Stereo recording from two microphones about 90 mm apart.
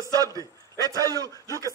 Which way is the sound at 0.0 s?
40° right (ahead or behind).